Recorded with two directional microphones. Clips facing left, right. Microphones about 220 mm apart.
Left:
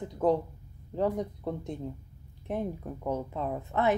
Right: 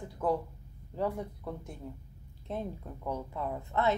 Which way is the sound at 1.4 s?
20° left (ahead or behind).